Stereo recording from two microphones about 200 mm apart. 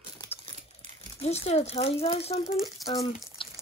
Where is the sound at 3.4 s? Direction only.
25° left (ahead or behind).